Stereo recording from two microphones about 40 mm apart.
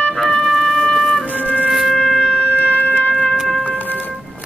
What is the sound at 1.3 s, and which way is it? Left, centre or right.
Music, left.